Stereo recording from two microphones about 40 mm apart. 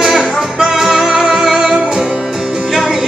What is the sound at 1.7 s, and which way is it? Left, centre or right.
Music, right.